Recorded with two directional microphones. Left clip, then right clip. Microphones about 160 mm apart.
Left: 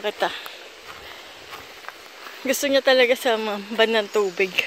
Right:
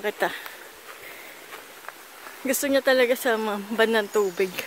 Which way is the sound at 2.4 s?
10° right (ahead or behind).